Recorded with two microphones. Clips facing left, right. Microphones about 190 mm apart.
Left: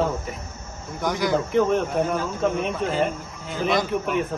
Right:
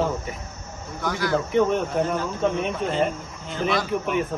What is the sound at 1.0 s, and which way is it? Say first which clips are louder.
Speech: left 2 dB; 15° left (ahead or behind).